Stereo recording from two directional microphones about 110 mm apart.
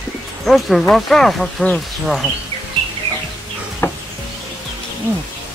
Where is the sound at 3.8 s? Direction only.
25° left (ahead or behind).